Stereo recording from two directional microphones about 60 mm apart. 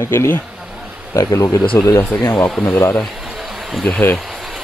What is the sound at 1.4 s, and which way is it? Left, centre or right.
Speech, left.